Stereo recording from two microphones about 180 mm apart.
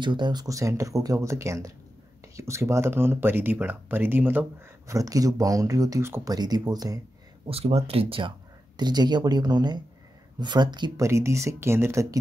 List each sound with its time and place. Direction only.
0.0 s speech: 25° right (ahead or behind)
7.4 s speech: 35° right (ahead or behind); by 12.2 s 15° right (ahead or behind)